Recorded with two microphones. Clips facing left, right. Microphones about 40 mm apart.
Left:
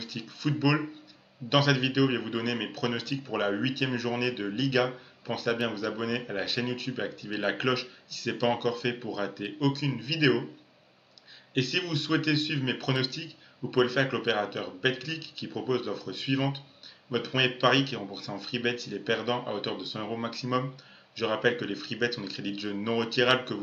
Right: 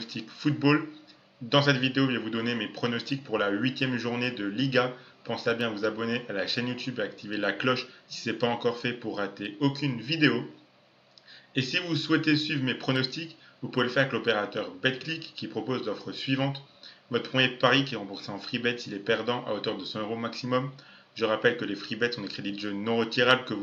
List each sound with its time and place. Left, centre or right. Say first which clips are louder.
0.0 s speech: right 3 dB; centre
11.5 s speech: even; centre